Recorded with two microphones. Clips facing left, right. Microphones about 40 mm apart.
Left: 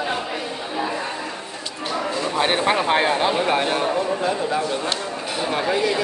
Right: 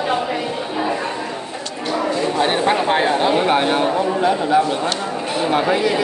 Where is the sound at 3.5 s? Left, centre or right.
Right.